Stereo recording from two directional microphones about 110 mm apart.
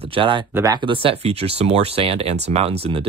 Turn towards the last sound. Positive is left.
turn(degrees=-60)  # may be behind; listen again after turning